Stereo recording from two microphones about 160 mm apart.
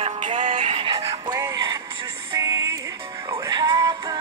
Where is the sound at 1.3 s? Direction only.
15° right (ahead or behind).